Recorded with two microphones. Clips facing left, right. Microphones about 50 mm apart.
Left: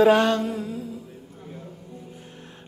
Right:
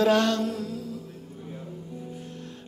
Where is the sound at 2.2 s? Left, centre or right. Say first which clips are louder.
Right 4 dB; left.